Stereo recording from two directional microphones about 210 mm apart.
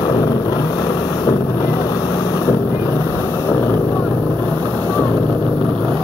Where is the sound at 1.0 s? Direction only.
15° left (ahead or behind).